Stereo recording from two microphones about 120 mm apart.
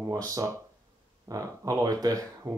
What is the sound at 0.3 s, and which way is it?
Speech, 25° right (ahead or behind).